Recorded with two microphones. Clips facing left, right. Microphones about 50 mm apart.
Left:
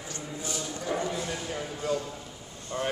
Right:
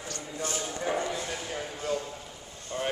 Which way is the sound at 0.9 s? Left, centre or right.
Centre.